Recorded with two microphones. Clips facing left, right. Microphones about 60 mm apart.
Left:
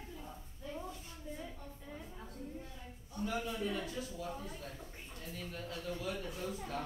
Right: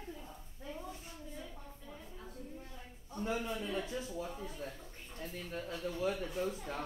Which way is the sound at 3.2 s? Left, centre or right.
Right.